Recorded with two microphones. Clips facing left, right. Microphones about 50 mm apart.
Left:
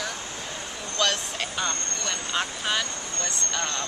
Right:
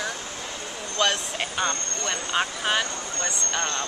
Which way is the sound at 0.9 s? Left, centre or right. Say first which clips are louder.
Right 2 dB; centre.